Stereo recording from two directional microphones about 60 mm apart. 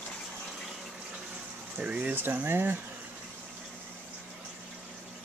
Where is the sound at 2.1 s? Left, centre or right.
Right.